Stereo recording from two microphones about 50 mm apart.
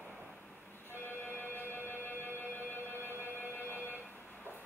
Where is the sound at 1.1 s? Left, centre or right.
Left.